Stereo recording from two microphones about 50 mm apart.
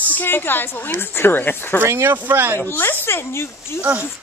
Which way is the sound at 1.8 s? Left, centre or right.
Right.